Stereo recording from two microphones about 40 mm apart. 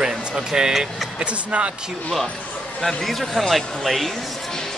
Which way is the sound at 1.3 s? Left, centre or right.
Right.